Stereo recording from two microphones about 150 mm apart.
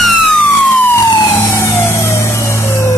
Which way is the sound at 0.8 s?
15° left (ahead or behind).